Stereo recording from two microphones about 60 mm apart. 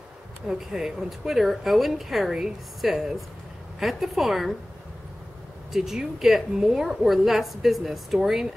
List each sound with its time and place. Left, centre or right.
0.5 s a woman's voice: centre
5.7 s a woman's voice: centre